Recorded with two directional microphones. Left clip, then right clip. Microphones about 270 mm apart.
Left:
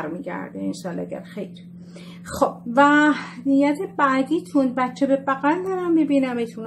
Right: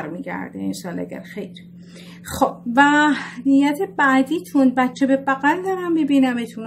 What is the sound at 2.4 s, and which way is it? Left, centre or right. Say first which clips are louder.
A woman's voice: right 1 dB; right.